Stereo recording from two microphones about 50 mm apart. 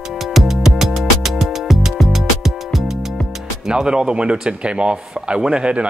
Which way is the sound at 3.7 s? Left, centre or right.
Centre.